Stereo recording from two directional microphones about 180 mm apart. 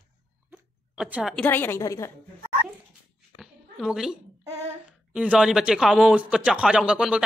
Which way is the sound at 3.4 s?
Centre (ahead or behind).